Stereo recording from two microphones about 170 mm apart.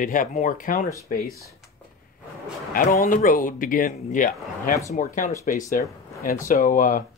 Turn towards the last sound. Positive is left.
turn(degrees=50)  # may be behind; listen again after turning